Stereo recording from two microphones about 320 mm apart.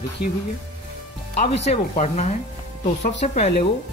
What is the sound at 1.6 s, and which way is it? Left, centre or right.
Speech, left.